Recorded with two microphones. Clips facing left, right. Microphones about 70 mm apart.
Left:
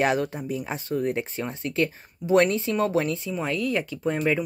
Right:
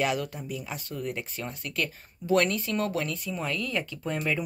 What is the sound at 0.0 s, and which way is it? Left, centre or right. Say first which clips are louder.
Speech: left 5 dB; left.